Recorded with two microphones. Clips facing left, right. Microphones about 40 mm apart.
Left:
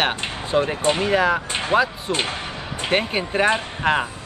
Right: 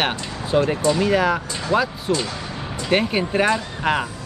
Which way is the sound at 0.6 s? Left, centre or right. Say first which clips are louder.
Right 1 dB; left.